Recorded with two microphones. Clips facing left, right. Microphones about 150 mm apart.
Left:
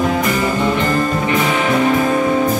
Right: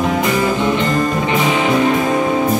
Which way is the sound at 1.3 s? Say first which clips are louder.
Right 1 dB; 20° right (ahead or behind).